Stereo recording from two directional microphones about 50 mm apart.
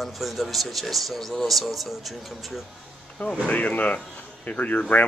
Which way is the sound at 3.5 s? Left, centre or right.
Left.